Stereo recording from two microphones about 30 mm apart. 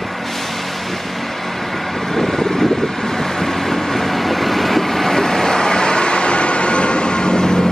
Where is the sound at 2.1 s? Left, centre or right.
Centre.